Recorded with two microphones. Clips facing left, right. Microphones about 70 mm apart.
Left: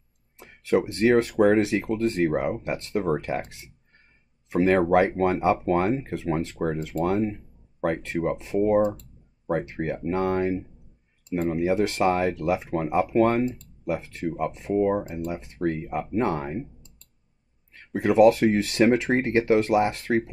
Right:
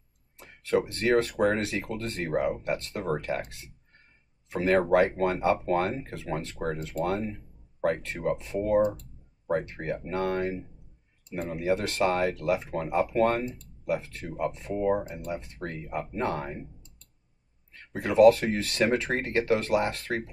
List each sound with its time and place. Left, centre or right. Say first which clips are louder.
0.4 s speech: left 3 dB; left
17.9 s speech: left 1 dB; left